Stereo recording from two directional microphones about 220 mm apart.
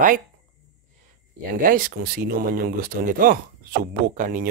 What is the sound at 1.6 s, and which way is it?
Speech, 40° right (ahead or behind).